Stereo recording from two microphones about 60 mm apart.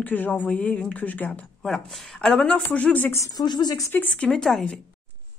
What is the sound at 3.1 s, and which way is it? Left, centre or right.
Speech, left.